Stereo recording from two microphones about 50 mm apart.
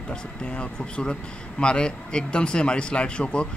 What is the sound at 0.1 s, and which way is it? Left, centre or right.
Speech, centre.